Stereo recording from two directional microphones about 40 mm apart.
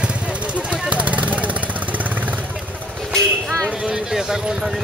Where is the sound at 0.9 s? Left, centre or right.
Right.